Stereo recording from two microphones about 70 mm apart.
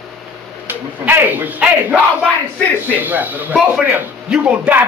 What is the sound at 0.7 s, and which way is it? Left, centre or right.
A man's voice, right.